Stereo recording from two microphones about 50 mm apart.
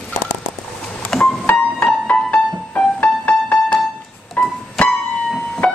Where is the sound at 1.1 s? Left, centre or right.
Centre.